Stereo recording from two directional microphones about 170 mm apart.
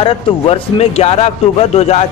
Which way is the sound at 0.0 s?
35° left (ahead or behind).